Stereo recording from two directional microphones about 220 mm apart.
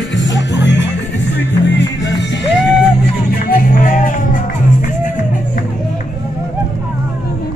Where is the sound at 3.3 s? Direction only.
40° left (ahead or behind).